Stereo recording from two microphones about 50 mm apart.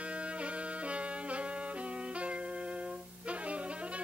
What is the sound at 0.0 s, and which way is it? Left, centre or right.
Music, right.